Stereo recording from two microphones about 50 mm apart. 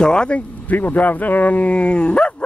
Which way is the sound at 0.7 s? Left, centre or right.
Left.